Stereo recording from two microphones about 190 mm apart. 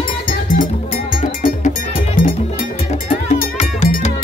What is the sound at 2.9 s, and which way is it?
Music, 35° left (ahead or behind).